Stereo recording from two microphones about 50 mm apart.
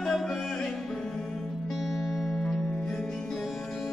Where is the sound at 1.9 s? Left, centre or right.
Centre.